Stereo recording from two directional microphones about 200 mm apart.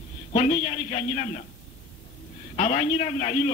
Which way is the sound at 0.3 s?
35° left (ahead or behind).